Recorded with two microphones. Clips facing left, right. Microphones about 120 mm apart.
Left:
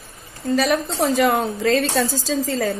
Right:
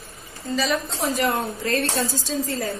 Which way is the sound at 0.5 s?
60° left (ahead or behind).